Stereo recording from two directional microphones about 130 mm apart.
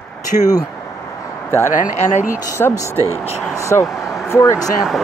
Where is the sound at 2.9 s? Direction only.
20° right (ahead or behind).